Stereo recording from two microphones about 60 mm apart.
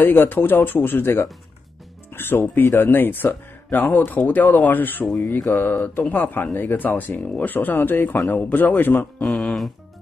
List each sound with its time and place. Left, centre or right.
0.0 s a man's voice: left
9.2 s music: centre